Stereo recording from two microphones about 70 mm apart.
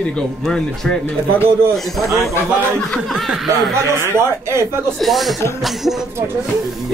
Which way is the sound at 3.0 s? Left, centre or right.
Centre.